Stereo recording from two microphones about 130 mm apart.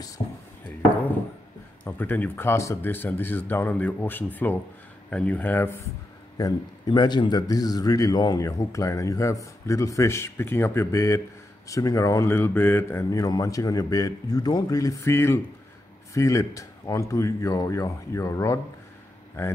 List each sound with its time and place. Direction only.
1.9 s speech: 15° left (ahead or behind)
6.3 s a man's voice: 30° left (ahead or behind)